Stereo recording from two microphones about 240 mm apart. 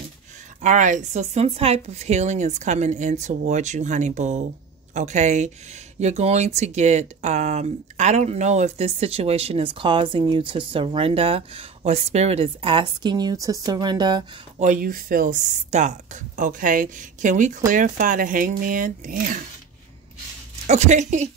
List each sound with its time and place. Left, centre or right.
0.6 s speech: right
14.6 s speech: right
20.6 s speech: right